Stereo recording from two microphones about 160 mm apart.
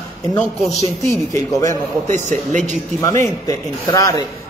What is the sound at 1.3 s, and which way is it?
Speech, 20° left (ahead or behind).